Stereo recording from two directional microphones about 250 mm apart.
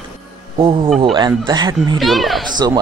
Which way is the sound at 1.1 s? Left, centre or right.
Centre.